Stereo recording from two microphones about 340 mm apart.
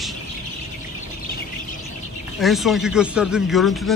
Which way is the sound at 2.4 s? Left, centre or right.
Centre.